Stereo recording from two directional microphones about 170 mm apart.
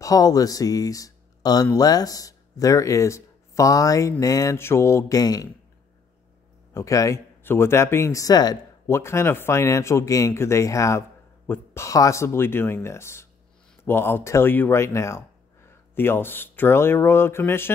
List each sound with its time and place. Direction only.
0.0 s speech: 20° left (ahead or behind)
6.7 s speech: 20° left (ahead or behind)